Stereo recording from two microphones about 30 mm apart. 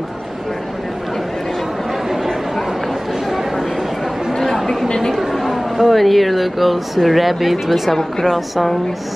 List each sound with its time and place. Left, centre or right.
3.3 s a sound: centre
4.3 s chatter: centre
4.8 s chatter: left
5.3 s a woman's voice: centre
8.0 s a woman's voice: centre